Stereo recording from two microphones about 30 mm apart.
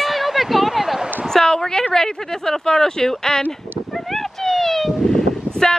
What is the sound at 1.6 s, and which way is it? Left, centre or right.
Speech, left.